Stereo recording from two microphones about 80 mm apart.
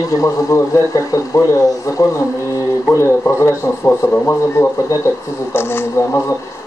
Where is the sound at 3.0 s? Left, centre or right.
Left.